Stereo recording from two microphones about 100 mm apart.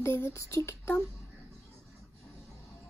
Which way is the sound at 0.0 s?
25° left (ahead or behind).